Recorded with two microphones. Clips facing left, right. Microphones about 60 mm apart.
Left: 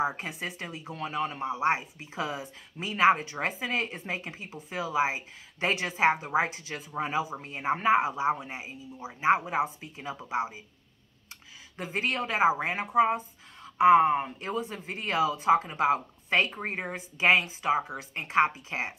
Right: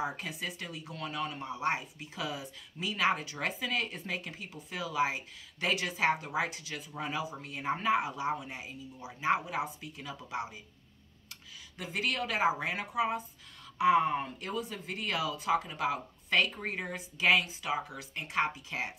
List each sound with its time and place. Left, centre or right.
0.0 s speech: left
11.7 s speech: left